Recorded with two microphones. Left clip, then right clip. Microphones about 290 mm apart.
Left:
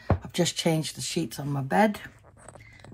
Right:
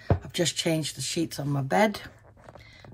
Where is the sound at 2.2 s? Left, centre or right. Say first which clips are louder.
Even; left.